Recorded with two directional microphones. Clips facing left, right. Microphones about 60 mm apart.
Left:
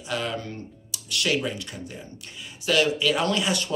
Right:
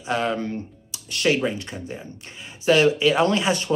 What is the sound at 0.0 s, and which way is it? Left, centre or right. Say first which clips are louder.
Speech: right 6 dB; right.